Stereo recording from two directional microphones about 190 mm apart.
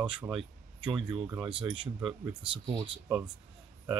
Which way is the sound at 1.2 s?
15° right (ahead or behind).